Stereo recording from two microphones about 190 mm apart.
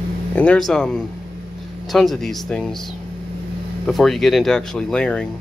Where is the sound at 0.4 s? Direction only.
5° left (ahead or behind).